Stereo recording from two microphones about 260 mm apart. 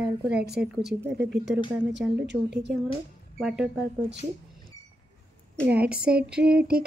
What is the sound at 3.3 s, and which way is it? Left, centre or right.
Speech, centre.